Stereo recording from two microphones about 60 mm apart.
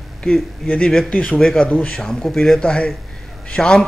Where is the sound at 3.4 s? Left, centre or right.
Centre.